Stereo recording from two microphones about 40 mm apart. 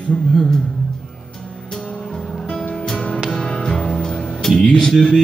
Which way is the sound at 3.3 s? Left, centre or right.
Left.